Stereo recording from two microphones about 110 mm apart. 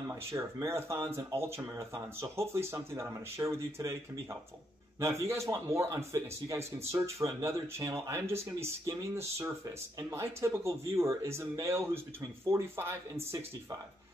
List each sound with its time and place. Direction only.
0.1 s a man's voice: 25° right (ahead or behind)